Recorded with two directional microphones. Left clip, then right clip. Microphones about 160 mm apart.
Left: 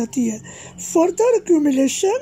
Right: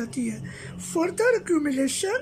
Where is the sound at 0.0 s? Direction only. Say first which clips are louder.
Left 8 dB; 20° left (ahead or behind).